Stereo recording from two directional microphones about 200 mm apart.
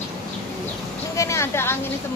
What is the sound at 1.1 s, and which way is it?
Speech, 15° left (ahead or behind).